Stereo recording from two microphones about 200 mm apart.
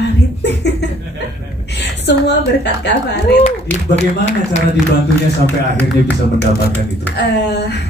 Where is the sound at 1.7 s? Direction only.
60° left (ahead or behind).